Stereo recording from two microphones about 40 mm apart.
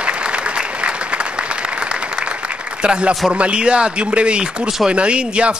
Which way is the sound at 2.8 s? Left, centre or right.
Right.